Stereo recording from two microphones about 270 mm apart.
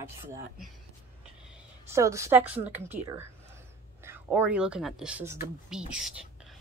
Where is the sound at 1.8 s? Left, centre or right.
Centre.